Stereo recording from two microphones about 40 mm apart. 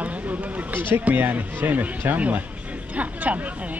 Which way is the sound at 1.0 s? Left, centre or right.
Right.